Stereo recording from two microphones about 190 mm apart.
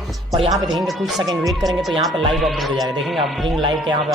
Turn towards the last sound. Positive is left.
turn(degrees=0)  # may be behind; listen again after turning